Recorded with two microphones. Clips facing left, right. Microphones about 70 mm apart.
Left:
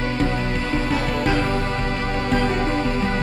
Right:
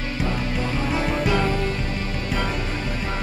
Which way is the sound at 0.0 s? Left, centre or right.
Left.